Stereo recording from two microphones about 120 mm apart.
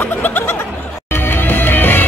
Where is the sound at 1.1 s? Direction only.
15° left (ahead or behind).